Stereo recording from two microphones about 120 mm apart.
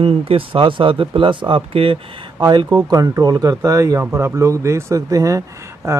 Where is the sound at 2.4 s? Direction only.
35° right (ahead or behind).